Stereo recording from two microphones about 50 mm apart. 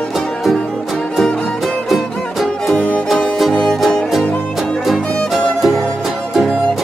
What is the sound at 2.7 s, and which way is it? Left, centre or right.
Music, left.